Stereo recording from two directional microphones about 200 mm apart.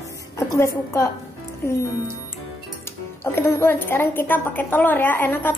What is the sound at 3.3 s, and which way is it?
A woman's voice, 10° left (ahead or behind).